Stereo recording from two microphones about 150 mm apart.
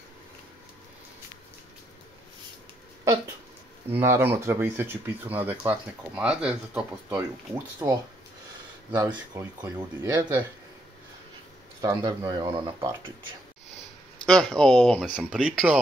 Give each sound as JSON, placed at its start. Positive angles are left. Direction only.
{"t": 4.0, "sound": "speech", "side_deg": -15}
{"t": 7.8, "sound": "speech", "side_deg": -25}
{"t": 9.0, "sound": "speech", "side_deg": -20}
{"t": 11.8, "sound": "speech", "side_deg": -25}
{"t": 14.2, "sound": "speech", "side_deg": 5}